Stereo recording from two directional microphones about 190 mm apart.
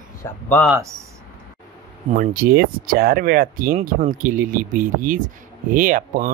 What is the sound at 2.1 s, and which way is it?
Speech, 45° right (ahead or behind).